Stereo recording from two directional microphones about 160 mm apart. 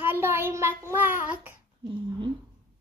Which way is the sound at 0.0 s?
15° right (ahead or behind).